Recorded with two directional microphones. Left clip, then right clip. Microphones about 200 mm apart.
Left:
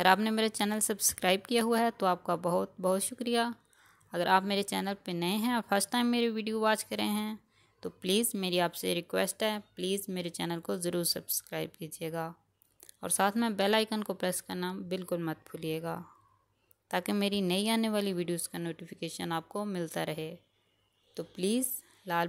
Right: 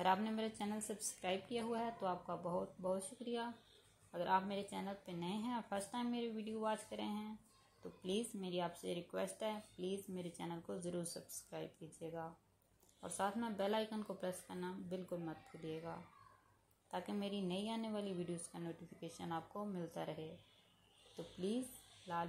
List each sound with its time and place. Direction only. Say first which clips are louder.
0.0 s speech: left 12 dB; 35° left (ahead or behind)
21.4 s speech: left 11 dB; 35° left (ahead or behind)